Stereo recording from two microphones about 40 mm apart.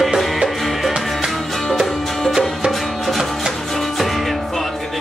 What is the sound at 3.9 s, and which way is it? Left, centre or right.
Music, centre.